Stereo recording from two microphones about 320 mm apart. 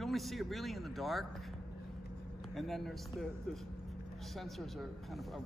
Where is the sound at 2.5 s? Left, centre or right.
Centre.